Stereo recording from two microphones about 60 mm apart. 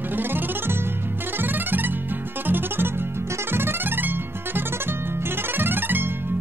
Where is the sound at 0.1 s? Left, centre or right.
Right.